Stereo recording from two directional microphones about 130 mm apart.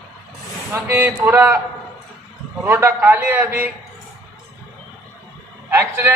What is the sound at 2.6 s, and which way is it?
A man's voice, 20° right (ahead or behind).